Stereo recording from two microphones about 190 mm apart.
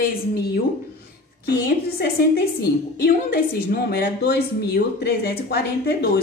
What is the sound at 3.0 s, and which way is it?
A woman's voice, 50° left (ahead or behind).